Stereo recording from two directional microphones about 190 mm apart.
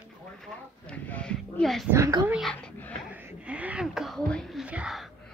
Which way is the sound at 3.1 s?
10° right (ahead or behind).